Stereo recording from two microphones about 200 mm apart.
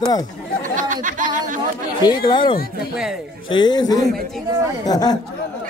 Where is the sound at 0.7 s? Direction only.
40° right (ahead or behind).